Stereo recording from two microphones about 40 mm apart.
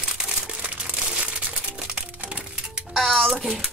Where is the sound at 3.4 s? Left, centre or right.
Centre.